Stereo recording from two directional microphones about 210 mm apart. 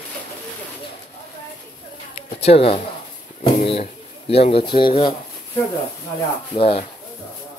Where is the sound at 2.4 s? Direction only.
30° left (ahead or behind).